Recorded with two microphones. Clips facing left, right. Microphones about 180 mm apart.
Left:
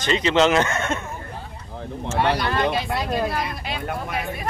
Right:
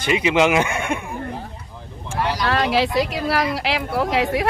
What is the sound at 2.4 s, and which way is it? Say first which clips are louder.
Speech: right 3 dB; 85° right.